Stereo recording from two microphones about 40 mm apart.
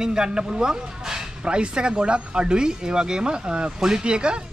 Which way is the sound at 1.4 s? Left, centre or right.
Right.